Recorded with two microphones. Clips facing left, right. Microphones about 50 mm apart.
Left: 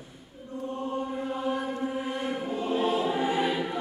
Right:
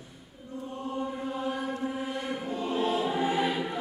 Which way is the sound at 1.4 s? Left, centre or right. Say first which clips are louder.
Left 2 dB; centre.